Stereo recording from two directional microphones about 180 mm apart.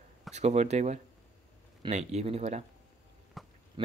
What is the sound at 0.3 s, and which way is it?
Speech, 40° right (ahead or behind).